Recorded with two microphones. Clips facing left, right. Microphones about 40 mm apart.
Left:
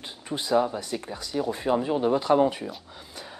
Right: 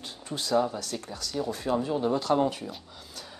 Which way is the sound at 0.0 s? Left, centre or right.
Centre.